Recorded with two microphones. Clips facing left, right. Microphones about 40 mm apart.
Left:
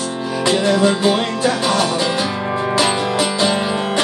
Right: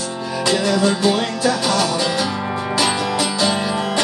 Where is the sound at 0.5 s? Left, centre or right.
Left.